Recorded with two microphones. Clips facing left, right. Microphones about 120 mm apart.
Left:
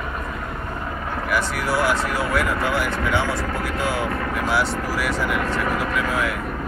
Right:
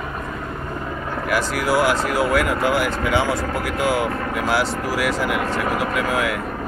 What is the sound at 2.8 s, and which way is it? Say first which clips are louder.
Speech: right 2 dB; 90° right.